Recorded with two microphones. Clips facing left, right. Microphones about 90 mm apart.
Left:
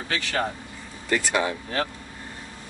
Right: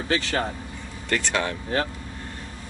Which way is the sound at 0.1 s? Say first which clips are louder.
Right 4 dB; 30° right (ahead or behind).